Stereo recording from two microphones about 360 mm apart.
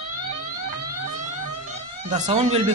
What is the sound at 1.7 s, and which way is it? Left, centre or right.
Police car, centre.